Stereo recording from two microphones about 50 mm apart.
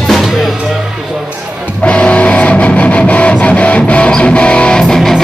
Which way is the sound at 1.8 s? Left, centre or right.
Left.